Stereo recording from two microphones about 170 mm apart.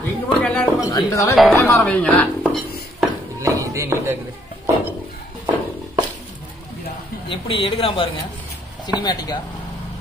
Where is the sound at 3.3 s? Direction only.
20° right (ahead or behind).